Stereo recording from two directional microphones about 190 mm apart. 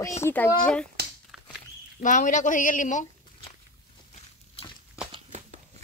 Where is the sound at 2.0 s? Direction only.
40° left (ahead or behind).